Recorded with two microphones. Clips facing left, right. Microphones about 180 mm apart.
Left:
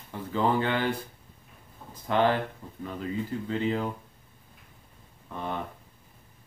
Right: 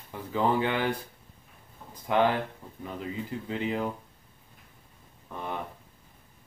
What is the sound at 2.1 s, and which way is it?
Speech, 15° right (ahead or behind).